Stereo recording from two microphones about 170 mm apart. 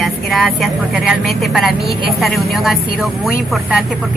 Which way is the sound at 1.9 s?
60° left (ahead or behind).